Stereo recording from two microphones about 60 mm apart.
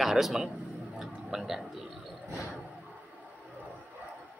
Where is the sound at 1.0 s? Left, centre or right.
Centre.